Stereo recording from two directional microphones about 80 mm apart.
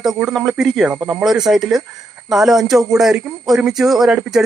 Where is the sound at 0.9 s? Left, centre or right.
Centre.